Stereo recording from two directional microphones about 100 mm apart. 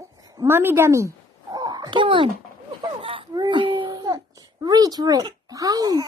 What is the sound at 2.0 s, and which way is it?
A child's voice, 60° right (ahead or behind).